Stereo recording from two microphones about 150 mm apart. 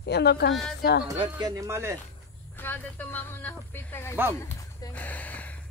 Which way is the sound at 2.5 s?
15° left (ahead or behind).